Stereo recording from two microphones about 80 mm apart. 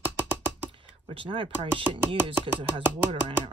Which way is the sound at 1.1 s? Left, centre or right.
Right.